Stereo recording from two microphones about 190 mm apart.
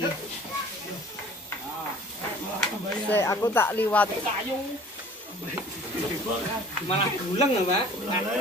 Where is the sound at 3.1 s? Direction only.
15° left (ahead or behind).